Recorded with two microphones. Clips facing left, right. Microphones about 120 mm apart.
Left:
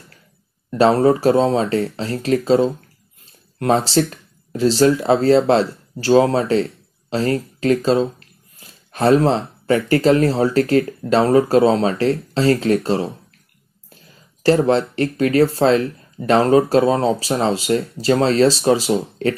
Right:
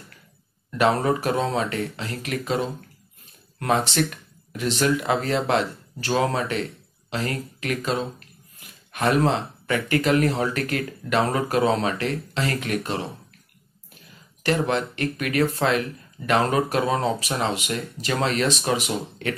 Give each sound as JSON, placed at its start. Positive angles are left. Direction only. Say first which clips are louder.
{"t": 0.7, "sound": "speech", "louder": "left 7 dB", "side_deg": 30}
{"t": 14.4, "sound": "speech", "louder": "left 8 dB", "side_deg": 30}